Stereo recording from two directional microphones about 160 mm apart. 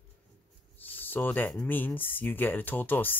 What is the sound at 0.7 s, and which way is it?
Cricket, 10° left (ahead or behind).